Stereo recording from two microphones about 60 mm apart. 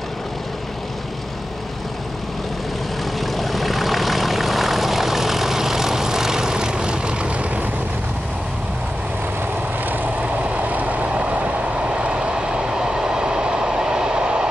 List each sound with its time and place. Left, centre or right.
3.2 s vehicle: centre
10.2 s train: right